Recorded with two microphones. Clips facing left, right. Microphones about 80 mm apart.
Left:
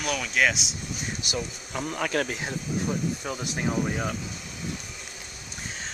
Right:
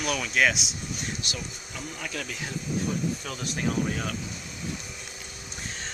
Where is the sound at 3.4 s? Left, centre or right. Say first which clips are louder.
Right 1 dB; centre.